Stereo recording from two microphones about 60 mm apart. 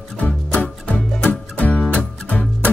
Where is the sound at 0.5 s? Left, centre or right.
Left.